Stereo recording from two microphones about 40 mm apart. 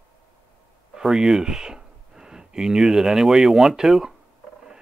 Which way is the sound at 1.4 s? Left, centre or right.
Centre.